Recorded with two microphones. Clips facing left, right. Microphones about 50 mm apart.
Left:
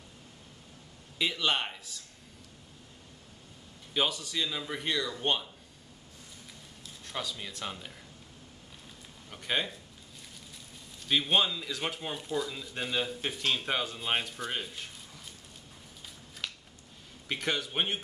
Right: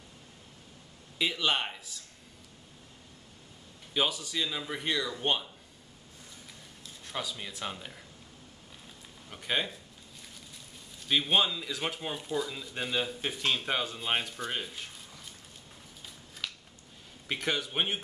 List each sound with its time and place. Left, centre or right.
1.1 s speech: centre
3.9 s speech: centre
7.1 s speech: centre
9.3 s speech: centre
11.0 s speech: centre
16.4 s a sound: centre
17.3 s speech: centre